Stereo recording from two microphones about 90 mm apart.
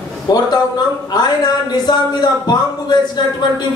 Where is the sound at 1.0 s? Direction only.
50° left (ahead or behind).